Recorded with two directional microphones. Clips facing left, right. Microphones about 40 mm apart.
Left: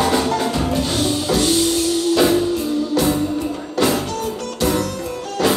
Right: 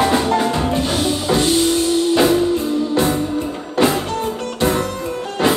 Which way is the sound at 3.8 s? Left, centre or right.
Right.